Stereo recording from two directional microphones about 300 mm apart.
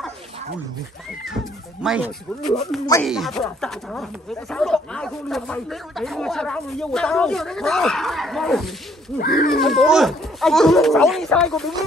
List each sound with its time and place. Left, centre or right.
1.2 s speech: centre
9.2 s speech: left
9.5 s speech: centre